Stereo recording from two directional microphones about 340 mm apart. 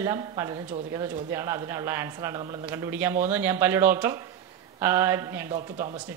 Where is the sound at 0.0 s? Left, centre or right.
Centre.